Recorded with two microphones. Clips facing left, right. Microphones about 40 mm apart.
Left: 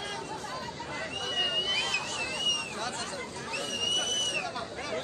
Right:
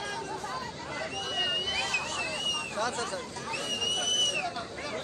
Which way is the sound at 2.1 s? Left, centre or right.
Right.